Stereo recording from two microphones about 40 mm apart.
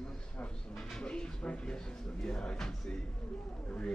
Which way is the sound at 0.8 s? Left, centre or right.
Centre.